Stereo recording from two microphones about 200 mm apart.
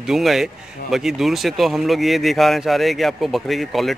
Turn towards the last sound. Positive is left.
turn(degrees=0)  # may be behind; listen again after turning